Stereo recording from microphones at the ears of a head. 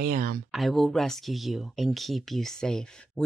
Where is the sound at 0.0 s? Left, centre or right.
Right.